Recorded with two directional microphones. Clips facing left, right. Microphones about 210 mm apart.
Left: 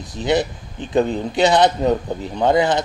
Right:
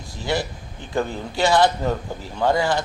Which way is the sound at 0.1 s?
20° left (ahead or behind).